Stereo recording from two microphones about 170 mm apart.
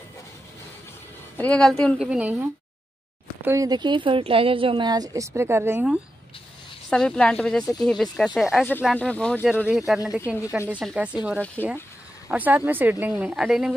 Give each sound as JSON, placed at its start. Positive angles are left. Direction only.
{"t": 1.4, "sound": "speech", "side_deg": 5}
{"t": 2.0, "sound": "speech", "side_deg": -5}
{"t": 3.4, "sound": "a woman's voice", "side_deg": -20}
{"t": 6.9, "sound": "speech", "side_deg": 5}